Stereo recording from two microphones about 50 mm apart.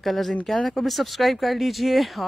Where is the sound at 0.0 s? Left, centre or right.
Centre.